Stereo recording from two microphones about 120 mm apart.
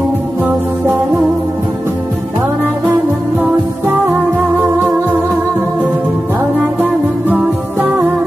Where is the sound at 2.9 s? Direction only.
15° right (ahead or behind).